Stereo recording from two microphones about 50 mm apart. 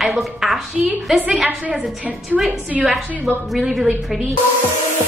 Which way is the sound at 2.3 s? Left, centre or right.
Centre.